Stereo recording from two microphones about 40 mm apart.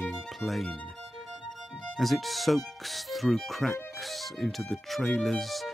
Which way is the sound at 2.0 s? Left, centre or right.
Centre.